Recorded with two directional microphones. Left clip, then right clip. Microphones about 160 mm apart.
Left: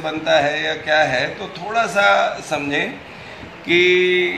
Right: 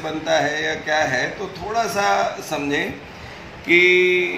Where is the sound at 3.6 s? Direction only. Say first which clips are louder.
Even; 55° left (ahead or behind).